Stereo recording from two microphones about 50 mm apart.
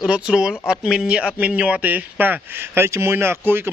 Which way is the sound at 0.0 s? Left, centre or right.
Centre.